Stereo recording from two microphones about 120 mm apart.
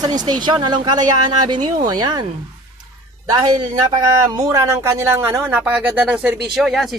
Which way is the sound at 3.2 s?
35° right (ahead or behind).